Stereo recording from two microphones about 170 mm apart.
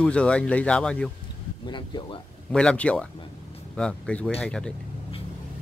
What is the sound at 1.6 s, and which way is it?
Speech, 30° left (ahead or behind).